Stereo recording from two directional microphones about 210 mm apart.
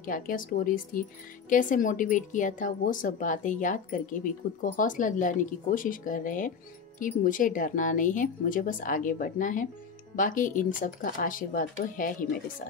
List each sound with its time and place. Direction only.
0.0 s a woman's voice: 40° left (ahead or behind)